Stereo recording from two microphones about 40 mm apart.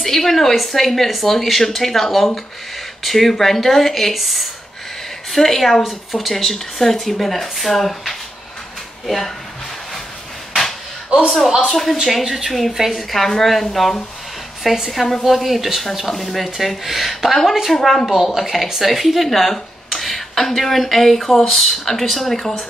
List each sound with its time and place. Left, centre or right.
0.0 s a woman's voice: centre
11.2 s a woman's voice: centre
18.1 s speech: centre